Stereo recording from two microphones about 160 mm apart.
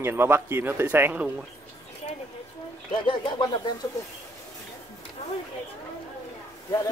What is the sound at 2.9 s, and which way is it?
Speech, 30° left (ahead or behind).